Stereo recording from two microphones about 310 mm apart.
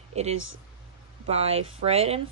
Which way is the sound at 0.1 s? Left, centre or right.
Right.